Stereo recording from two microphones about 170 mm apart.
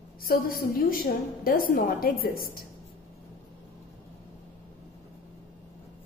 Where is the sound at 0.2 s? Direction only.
60° left (ahead or behind).